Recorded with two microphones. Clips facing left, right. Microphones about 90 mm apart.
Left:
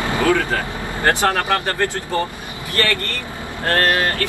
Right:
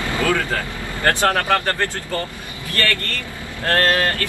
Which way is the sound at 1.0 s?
20° left (ahead or behind).